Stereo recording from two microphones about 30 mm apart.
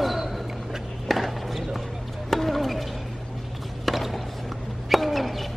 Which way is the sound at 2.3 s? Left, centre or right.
Centre.